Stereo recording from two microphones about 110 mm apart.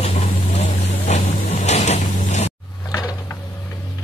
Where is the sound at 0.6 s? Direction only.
90° left.